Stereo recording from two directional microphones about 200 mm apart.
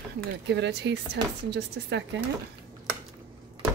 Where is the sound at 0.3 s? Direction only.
60° right (ahead or behind).